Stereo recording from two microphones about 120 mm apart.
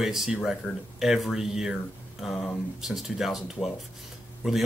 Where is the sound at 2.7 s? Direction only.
Centre (ahead or behind).